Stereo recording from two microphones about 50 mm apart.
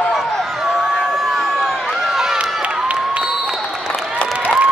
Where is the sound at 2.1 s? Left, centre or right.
Centre.